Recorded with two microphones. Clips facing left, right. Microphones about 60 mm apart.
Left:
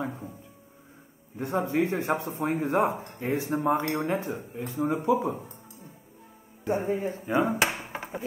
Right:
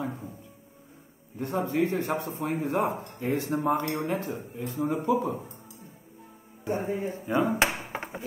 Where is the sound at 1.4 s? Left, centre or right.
Left.